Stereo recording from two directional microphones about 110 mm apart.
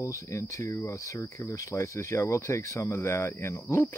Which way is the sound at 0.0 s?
30° left (ahead or behind).